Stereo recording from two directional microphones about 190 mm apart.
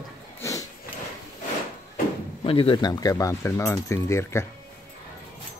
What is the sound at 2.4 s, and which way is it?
Speech, 30° left (ahead or behind).